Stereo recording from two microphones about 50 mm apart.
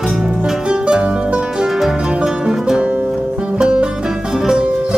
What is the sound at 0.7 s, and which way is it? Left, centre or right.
Music, centre.